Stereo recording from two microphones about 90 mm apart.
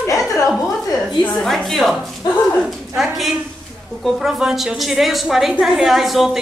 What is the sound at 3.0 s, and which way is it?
A man's voice, centre (ahead or behind).